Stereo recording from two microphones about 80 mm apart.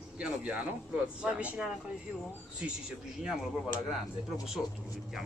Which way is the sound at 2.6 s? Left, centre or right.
Centre.